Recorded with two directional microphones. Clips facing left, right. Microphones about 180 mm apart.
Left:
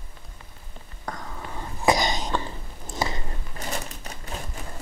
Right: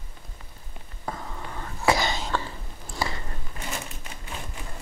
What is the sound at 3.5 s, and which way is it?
Crumpling, 40° left (ahead or behind).